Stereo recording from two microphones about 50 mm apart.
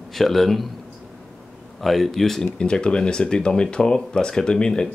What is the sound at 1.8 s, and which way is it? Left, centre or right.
Speech, centre.